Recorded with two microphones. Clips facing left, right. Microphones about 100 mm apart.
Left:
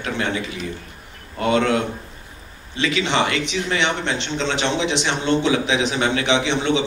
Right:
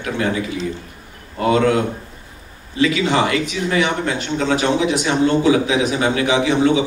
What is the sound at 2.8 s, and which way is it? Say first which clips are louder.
Speech: right 4 dB; 25° left (ahead or behind).